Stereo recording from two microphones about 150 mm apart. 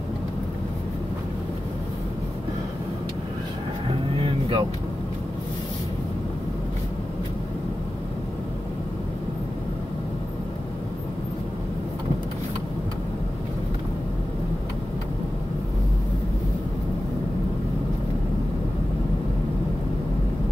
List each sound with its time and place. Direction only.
4.2 s vehicle: 30° right (ahead or behind)